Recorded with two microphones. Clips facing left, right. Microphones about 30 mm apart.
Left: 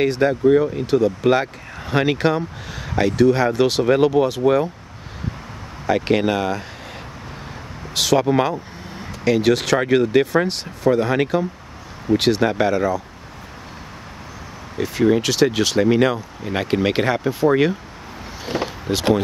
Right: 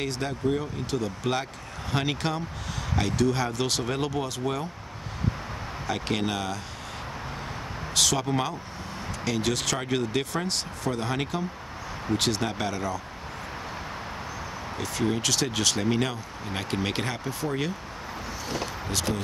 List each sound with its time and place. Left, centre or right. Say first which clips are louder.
0.0 s speech: left 12 dB; left
5.9 s speech: left 11 dB; centre
7.9 s speech: left 8 dB; left
14.8 s speech: left 11 dB; centre
18.5 s a sound: left 9 dB; left